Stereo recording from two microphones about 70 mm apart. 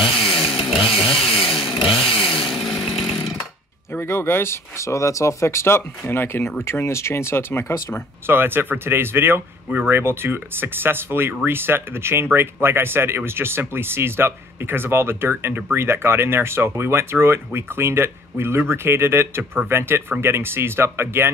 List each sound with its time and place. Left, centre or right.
0.2 s chainsaw: centre
4.0 s speech: left
8.3 s speech: right